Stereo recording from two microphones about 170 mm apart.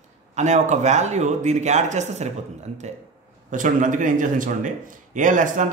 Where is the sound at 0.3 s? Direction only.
45° right (ahead or behind).